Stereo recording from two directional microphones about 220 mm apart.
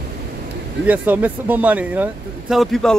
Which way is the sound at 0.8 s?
5° right (ahead or behind).